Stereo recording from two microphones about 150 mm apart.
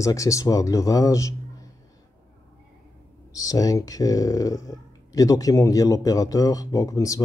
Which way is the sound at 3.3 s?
25° left (ahead or behind).